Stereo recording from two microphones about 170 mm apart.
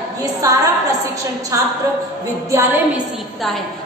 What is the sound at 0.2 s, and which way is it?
A woman's voice, 20° right (ahead or behind).